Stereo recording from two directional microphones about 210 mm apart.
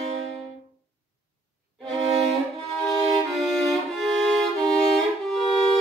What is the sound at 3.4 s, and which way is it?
Violin, centre (ahead or behind).